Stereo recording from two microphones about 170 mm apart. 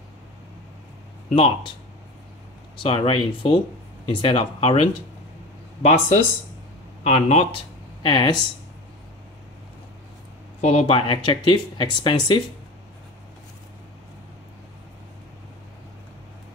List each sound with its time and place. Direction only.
1.3 s speech: 35° left (ahead or behind)
2.8 s speech: 30° left (ahead or behind)
8.0 s speech: 25° left (ahead or behind)
10.6 s speech: 40° left (ahead or behind)